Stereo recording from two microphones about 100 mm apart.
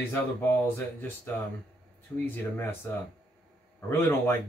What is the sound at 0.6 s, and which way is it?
Speech, 20° left (ahead or behind).